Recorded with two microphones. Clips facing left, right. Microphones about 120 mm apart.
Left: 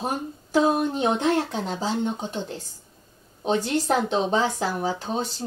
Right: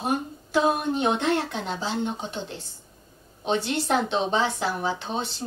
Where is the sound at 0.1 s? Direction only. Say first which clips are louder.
Right 1 dB; 35° left (ahead or behind).